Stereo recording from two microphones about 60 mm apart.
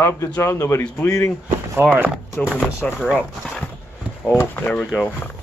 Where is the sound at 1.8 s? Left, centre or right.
Right.